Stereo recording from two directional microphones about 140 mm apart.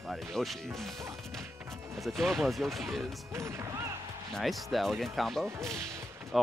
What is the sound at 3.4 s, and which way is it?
Speech, 20° right (ahead or behind).